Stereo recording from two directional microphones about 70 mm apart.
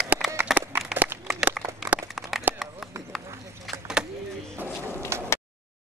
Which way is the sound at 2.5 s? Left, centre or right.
Right.